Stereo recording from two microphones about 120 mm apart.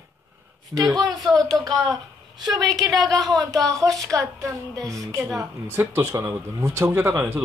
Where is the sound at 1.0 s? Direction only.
30° right (ahead or behind).